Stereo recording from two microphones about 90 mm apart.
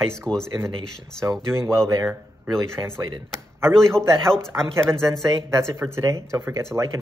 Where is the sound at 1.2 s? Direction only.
30° right (ahead or behind).